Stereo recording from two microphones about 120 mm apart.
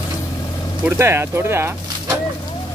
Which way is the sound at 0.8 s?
20° right (ahead or behind).